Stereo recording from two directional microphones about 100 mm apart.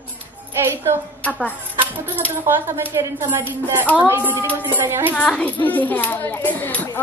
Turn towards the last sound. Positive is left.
turn(degrees=15)  # may be behind; listen again after turning